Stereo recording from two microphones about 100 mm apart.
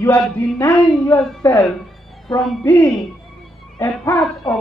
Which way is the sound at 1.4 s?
35° left (ahead or behind).